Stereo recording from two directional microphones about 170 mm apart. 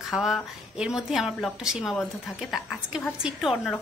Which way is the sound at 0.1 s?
Centre (ahead or behind).